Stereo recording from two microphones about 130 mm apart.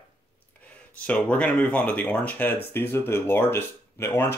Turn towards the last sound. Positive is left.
turn(degrees=20)  # may be behind; listen again after turning